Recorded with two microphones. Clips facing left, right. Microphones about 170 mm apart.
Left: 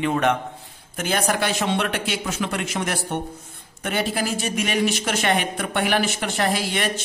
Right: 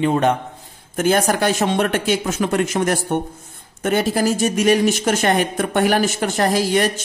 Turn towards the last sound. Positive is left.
turn(degrees=-40)  # may be behind; listen again after turning